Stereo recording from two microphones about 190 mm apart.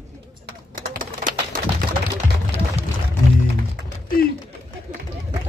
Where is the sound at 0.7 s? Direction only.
45° right (ahead or behind).